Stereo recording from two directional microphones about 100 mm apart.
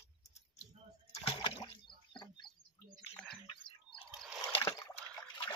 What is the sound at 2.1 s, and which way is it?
Bird, 50° left (ahead or behind).